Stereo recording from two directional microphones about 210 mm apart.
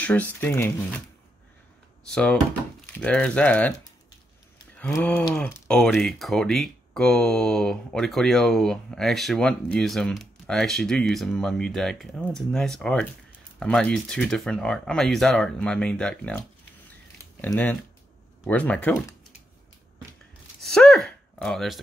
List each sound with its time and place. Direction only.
0.0 s speech: 5° left (ahead or behind)
2.0 s speech: 5° left (ahead or behind)
4.7 s speech: 5° left (ahead or behind)
20.6 s speech: centre (ahead or behind)